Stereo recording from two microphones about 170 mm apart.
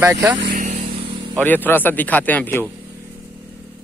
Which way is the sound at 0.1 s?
20° right (ahead or behind).